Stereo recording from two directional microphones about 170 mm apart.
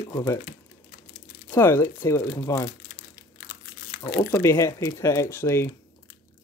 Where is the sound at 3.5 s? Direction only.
65° left (ahead or behind).